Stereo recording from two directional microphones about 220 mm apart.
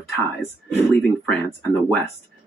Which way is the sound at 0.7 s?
5° left (ahead or behind).